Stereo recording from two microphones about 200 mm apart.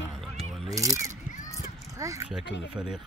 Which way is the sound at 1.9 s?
15° right (ahead or behind).